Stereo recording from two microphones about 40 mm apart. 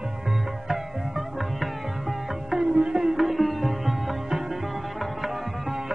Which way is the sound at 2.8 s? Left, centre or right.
Centre.